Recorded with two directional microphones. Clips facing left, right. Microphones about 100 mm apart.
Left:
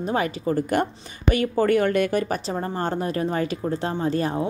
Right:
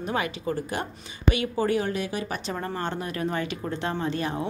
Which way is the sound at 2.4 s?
35° left (ahead or behind).